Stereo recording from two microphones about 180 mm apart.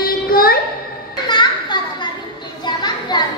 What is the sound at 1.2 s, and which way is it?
Children playing, 25° left (ahead or behind).